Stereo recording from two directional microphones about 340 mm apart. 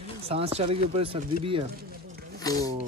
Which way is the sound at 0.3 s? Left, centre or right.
Centre.